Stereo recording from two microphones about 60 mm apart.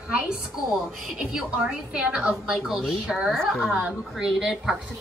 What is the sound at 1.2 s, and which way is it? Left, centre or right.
A woman's voice, centre.